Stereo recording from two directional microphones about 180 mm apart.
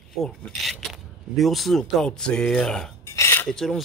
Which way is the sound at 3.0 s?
15° left (ahead or behind).